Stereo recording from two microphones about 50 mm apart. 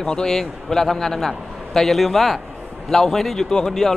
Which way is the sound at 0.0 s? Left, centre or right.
Centre.